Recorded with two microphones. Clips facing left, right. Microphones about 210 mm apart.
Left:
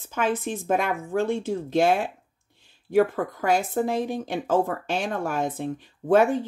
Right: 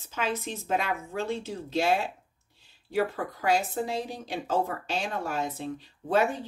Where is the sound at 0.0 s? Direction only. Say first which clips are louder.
Left 6 dB; 50° left (ahead or behind).